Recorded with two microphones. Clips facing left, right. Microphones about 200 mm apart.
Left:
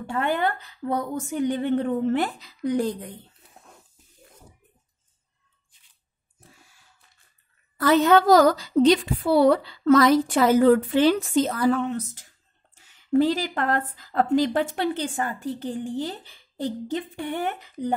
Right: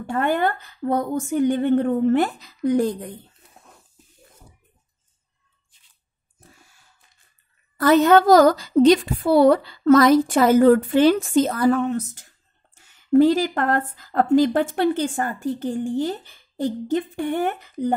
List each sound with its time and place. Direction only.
0.0 s speech: 45° right (ahead or behind)
7.7 s speech: 45° right (ahead or behind)